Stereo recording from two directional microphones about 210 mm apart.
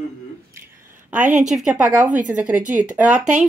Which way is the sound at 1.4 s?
Centre (ahead or behind).